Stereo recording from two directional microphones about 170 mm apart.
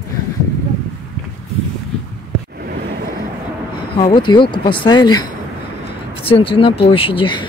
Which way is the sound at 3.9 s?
30° left (ahead or behind).